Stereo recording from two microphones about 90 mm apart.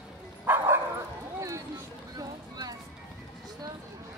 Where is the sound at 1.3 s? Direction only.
35° right (ahead or behind).